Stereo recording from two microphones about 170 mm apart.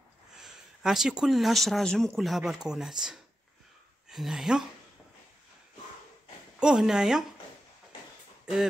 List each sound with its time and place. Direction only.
0.4 s speech: centre (ahead or behind)
6.6 s speech: 5° right (ahead or behind)